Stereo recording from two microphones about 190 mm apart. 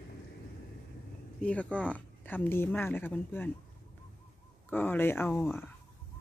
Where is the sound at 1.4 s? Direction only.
5° left (ahead or behind).